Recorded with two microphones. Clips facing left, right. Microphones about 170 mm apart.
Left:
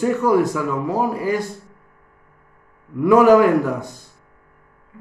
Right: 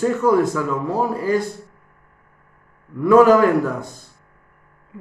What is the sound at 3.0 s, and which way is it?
Speech, 15° left (ahead or behind).